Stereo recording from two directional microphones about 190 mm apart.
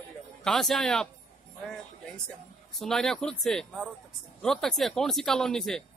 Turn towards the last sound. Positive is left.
turn(degrees=0)  # may be behind; listen again after turning